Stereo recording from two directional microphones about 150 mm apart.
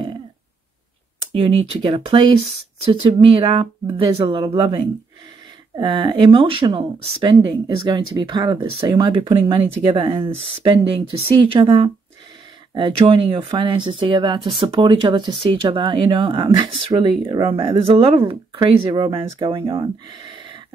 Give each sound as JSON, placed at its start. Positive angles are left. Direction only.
{"t": 1.2, "sound": "speech", "side_deg": -35}